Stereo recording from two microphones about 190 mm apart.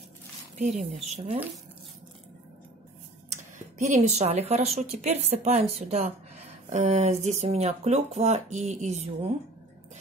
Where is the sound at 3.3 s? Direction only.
40° right (ahead or behind).